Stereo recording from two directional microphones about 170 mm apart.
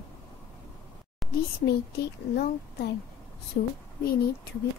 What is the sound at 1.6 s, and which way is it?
A woman's voice, 70° left (ahead or behind).